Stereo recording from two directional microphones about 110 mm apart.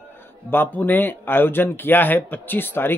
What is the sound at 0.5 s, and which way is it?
Speech, 15° left (ahead or behind).